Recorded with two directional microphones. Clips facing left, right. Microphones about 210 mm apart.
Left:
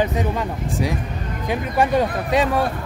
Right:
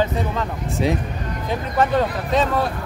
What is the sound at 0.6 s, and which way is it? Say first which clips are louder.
Speech: right 4 dB; 25° right (ahead or behind).